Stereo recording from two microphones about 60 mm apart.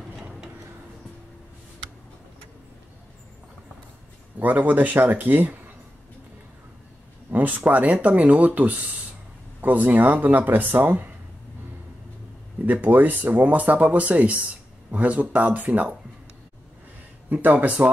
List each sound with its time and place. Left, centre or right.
0.1 s a sound: centre
4.4 s speech: right
7.2 s speech: right
12.8 s speech: right
17.3 s speech: right